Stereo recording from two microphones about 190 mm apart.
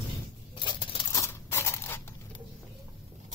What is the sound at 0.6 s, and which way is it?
Patter, 15° left (ahead or behind).